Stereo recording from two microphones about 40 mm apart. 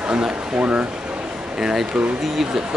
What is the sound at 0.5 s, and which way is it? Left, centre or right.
Speech, right.